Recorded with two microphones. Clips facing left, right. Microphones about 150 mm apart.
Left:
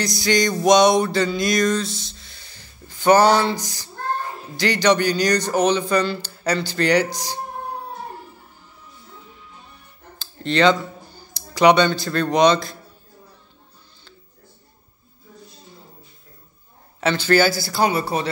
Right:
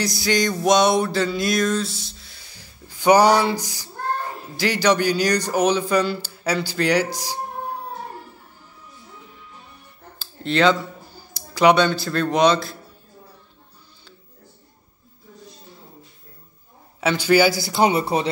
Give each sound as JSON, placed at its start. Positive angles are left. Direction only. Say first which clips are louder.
{"t": 0.0, "sound": "music", "louder": "left 1 dB", "side_deg": -5}
{"t": 4.6, "sound": "speech", "louder": "left 1 dB", "side_deg": -5}
{"t": 10.1, "sound": "speech", "louder": "left 1 dB", "side_deg": -5}
{"t": 17.0, "sound": "speech", "louder": "right 1 dB", "side_deg": -10}